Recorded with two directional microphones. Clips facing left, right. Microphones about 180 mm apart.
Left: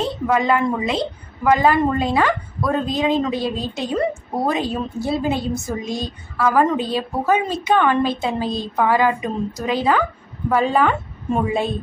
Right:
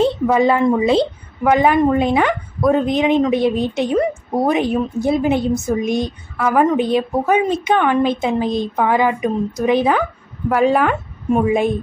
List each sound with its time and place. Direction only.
0.3 s a woman's voice: 25° right (ahead or behind)